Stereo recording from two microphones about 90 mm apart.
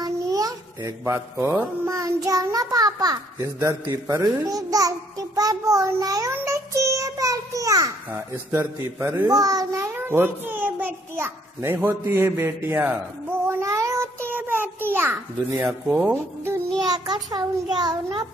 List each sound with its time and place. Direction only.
0.0 s a sound: 45° right (ahead or behind); by 2.0 s 25° right (ahead or behind)
2.0 s a child's voice: 40° right (ahead or behind)
6.3 s child singing: 35° right (ahead or behind)
8.1 s speech: 20° right (ahead or behind)
9.3 s a child's voice: 40° right (ahead or behind)
9.9 s a child's voice: 25° right (ahead or behind)
13.5 s child singing: 35° right (ahead or behind)
15.5 s speech: 15° right (ahead or behind)
16.9 s a child's voice: 50° right (ahead or behind)